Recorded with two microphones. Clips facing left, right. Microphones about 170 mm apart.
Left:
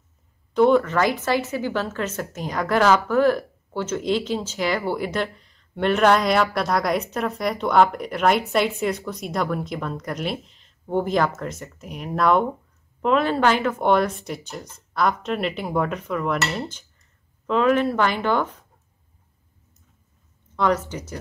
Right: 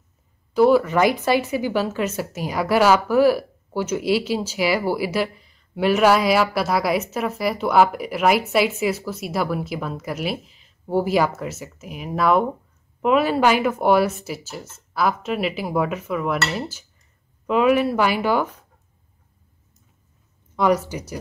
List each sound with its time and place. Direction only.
0.6 s a woman's voice: 5° right (ahead or behind)
20.5 s speech: 10° right (ahead or behind)